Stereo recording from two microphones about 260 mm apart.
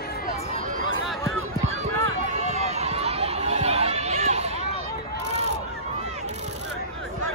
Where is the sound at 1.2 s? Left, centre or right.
Right.